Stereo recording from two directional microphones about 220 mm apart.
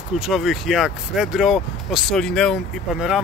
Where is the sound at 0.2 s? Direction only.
Centre (ahead or behind).